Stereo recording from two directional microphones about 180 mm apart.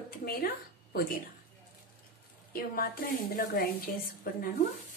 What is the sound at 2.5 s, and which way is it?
A woman's voice, 55° left (ahead or behind).